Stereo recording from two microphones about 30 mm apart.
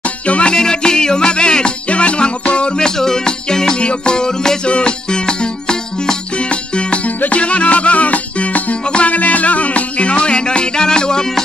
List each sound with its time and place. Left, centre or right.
0.5 s music: left
1.9 s music: left
2.8 s music: left
3.7 s music: left
4.6 s music: left
6.3 s music: left
7.2 s music: left